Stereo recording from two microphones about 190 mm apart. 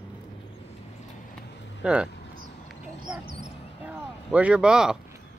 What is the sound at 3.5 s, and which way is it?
Basketball bounce, 30° left (ahead or behind).